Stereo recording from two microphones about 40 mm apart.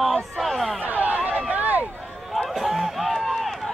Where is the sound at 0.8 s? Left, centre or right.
Right.